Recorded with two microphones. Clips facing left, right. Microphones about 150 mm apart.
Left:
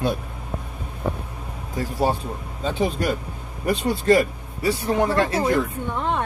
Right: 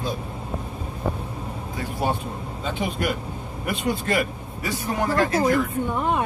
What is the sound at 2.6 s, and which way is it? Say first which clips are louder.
Speech: left 4 dB; 35° left (ahead or behind).